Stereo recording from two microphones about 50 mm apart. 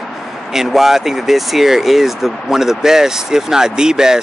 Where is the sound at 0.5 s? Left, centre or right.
Centre.